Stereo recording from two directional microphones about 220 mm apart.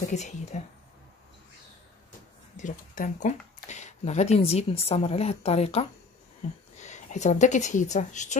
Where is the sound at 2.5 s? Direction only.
35° left (ahead or behind).